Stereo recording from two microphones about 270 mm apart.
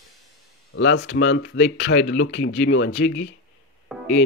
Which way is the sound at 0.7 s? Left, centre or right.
Left.